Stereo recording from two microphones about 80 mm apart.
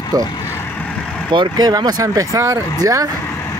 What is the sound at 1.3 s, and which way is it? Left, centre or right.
Speech, right.